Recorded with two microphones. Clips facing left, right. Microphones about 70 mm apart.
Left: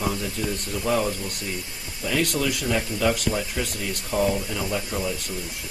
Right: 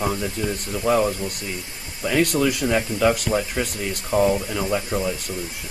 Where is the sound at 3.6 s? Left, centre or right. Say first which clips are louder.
Right 3 dB; right.